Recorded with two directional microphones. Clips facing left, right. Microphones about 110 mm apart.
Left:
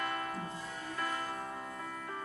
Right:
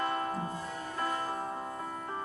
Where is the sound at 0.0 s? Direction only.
30° right (ahead or behind).